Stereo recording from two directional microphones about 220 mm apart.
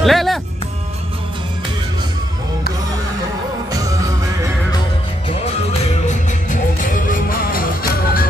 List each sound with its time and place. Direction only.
0.0 s music: centre (ahead or behind)
6.0 s music: 35° left (ahead or behind)